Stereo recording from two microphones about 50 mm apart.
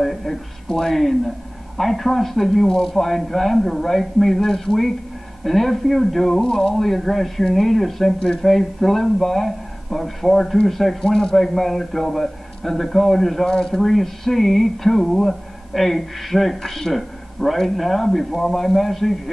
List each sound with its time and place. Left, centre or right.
0.0 s speech: centre